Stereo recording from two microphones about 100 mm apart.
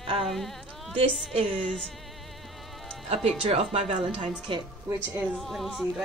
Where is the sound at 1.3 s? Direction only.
65° right (ahead or behind).